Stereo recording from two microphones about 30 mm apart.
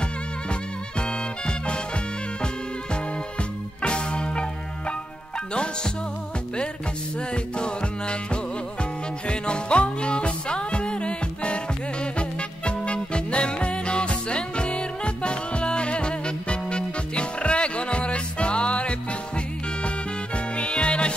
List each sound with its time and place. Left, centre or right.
0.5 s swing music: left
3.8 s music: left
7.5 s music: left